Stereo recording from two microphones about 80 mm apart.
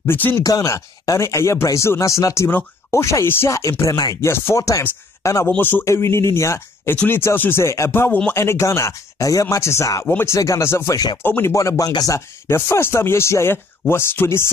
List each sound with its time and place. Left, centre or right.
0.0 s speech: left
0.4 s speech: left
3.8 s speech: left
4.2 s speech: left
5.6 s speech: left
5.9 s speech: left
10.0 s speech: left
10.3 s speech: left
11.5 s speech: left